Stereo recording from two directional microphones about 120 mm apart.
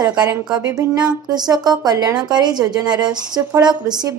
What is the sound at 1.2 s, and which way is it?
A woman's voice, 35° right (ahead or behind).